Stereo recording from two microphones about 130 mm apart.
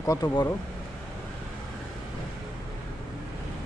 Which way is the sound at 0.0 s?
30° left (ahead or behind).